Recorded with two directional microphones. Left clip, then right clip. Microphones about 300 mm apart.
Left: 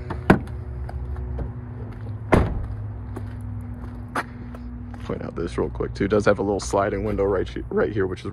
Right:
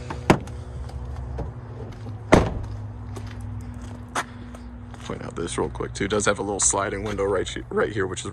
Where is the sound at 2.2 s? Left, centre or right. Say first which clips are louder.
Right 3 dB; right.